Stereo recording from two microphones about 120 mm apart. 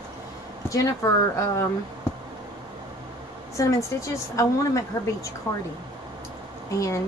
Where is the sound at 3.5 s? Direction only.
25° left (ahead or behind).